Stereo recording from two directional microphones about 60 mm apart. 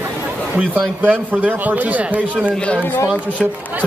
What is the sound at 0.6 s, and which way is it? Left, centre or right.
A man's voice, centre.